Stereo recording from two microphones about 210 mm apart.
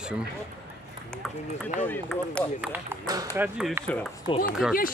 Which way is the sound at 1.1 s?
5° left (ahead or behind).